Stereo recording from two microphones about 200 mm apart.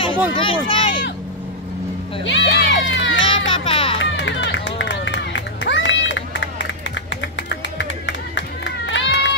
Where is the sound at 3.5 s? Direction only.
25° left (ahead or behind).